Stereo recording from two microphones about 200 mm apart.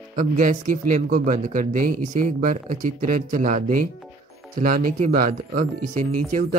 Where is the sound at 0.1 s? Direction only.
40° right (ahead or behind).